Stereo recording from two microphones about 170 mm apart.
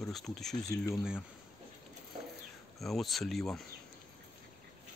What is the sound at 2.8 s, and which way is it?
Speech, centre (ahead or behind).